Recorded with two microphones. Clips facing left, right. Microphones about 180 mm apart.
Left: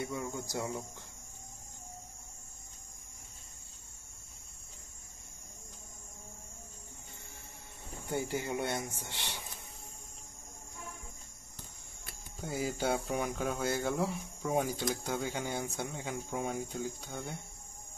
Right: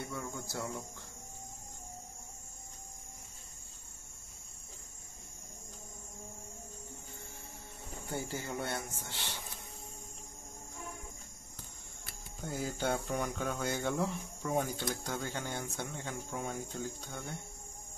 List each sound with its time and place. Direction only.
0.0 s speech: 15° left (ahead or behind)
8.1 s speech: 15° left (ahead or behind)
12.4 s speech: 5° left (ahead or behind)